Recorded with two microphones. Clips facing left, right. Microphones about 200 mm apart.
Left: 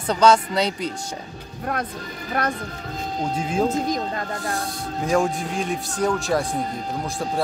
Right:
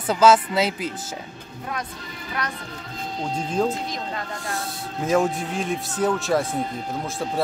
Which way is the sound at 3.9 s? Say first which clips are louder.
Left 5 dB; 45° left (ahead or behind).